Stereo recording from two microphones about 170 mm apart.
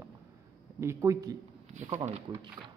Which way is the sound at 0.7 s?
15° right (ahead or behind).